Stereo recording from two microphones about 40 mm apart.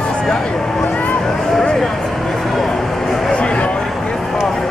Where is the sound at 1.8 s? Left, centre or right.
Centre.